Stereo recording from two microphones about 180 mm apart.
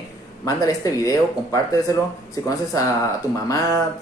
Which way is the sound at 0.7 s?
20° left (ahead or behind).